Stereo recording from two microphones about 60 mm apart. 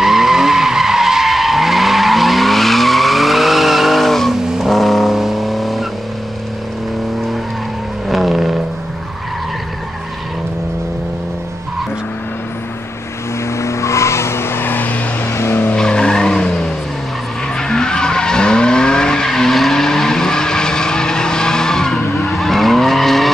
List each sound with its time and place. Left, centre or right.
0.0 s vehicle: centre
8.1 s vehicle: centre
13.6 s vehicle: left
15.3 s vehicle: left
15.7 s skidding: centre
17.6 s vehicle: centre